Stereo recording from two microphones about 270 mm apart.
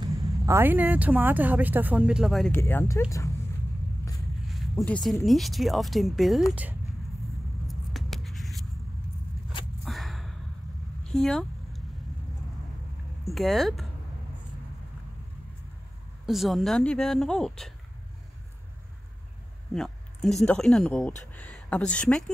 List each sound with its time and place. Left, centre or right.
0.0 s speech: centre
4.5 s speech: centre
7.6 s a sound: centre
9.5 s a sound: centre
9.8 s gasp: centre
11.1 s a sound: centre
13.2 s speech: centre
16.3 s speech: centre
19.7 s speech: centre